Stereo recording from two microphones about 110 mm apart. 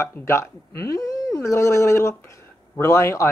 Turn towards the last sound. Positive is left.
turn(degrees=25)  # may be behind; listen again after turning